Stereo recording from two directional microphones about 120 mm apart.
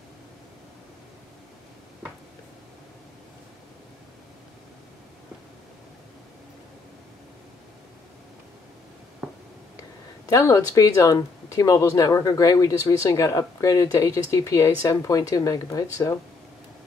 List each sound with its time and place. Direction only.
10.2 s speech: 30° left (ahead or behind)